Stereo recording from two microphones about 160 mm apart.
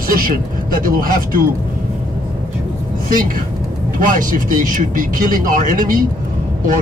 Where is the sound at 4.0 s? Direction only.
55° right (ahead or behind).